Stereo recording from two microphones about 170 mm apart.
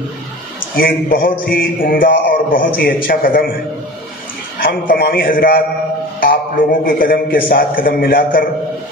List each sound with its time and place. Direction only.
0.7 s a man's voice: 55° left (ahead or behind)
4.6 s a man's voice: 65° left (ahead or behind)